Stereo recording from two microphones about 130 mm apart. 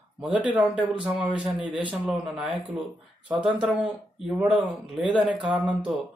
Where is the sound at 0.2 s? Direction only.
10° right (ahead or behind).